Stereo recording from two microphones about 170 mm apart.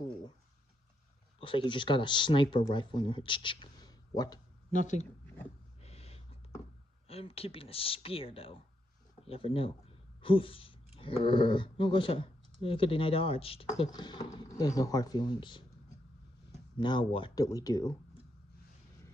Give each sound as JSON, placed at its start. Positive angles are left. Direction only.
{"t": 1.4, "sound": "speech", "side_deg": 30}
{"t": 4.7, "sound": "speech", "side_deg": 45}
{"t": 5.2, "sound": "a sound", "side_deg": 10}
{"t": 5.8, "sound": "a sound", "side_deg": 35}
{"t": 7.1, "sound": "speech", "side_deg": 35}
{"t": 16.7, "sound": "speech", "side_deg": 25}